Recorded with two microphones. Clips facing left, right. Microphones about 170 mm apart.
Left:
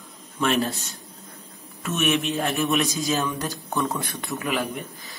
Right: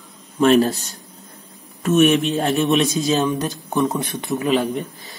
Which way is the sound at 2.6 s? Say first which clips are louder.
Right 6 dB; 20° right (ahead or behind).